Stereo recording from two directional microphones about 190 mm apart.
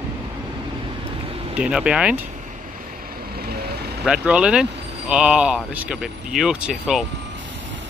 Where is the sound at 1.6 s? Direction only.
5° right (ahead or behind).